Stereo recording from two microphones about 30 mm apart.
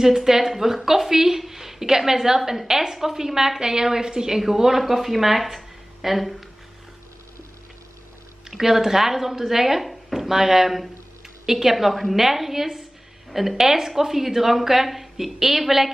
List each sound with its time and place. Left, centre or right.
0.0 s a woman's voice: centre
8.5 s a woman's voice: centre
9.8 s drawer open or close: centre
10.2 s a woman's voice: centre